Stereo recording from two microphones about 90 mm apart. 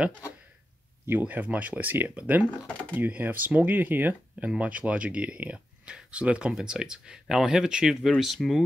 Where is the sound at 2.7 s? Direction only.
15° left (ahead or behind).